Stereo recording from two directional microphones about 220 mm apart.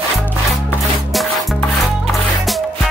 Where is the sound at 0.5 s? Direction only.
Centre (ahead or behind).